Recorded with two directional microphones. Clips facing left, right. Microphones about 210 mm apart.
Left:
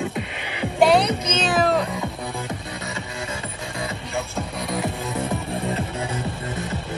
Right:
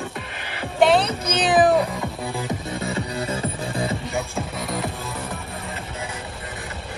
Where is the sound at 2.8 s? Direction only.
35° right (ahead or behind).